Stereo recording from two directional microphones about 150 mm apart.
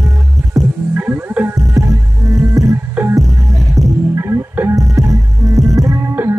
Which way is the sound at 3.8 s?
25° right (ahead or behind).